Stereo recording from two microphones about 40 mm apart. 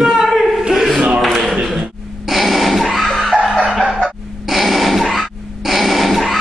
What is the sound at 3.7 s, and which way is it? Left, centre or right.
Chicken, centre.